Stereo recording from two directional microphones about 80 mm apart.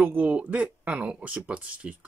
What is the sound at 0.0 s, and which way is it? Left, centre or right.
Speech, centre.